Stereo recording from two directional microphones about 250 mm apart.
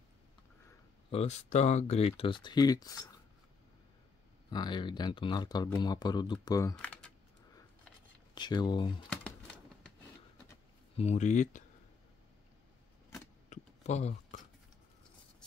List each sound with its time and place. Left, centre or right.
1.1 s speech: left
4.5 s speech: centre
8.4 s speech: centre
11.0 s speech: left
13.5 s a sound: left